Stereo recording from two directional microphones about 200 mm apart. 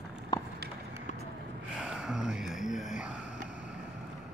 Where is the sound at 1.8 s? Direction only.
Centre (ahead or behind).